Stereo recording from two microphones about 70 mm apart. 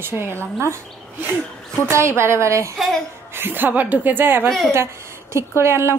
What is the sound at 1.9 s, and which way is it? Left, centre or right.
Speech, right.